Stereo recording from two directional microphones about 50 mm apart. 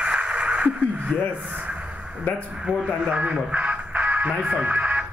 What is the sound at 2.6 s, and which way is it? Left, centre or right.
Speech, centre.